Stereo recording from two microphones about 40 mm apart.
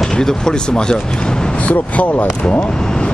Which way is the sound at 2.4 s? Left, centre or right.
Left.